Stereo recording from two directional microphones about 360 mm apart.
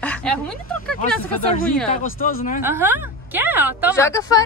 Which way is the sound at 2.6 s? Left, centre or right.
Centre.